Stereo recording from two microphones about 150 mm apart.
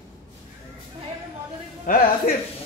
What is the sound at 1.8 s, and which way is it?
Speech, 65° left (ahead or behind).